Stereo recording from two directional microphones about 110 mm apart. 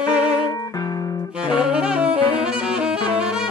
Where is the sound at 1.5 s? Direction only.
5° right (ahead or behind).